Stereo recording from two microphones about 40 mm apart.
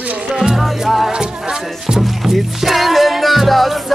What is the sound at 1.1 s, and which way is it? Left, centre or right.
Music, right.